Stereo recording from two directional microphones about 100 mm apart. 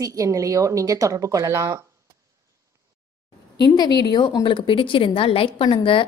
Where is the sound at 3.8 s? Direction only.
45° left (ahead or behind).